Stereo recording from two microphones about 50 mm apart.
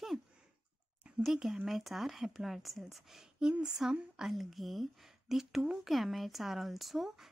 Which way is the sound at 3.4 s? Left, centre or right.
Centre.